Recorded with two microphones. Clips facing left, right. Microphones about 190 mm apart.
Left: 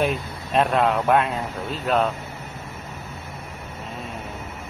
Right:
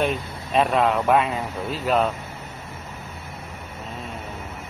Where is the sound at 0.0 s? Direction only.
Centre (ahead or behind).